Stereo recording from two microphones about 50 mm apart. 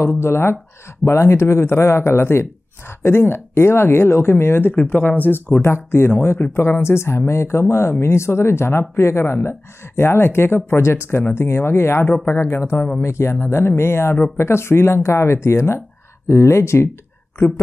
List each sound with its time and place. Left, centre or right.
0.0 s speech: left
4.8 s speech: left
5.6 s speech: left
13.0 s speech: left